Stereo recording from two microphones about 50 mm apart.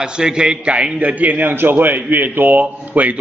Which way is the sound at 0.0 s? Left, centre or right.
Centre.